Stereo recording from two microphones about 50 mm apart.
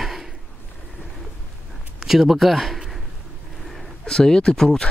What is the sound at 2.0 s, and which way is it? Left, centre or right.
Speech, centre.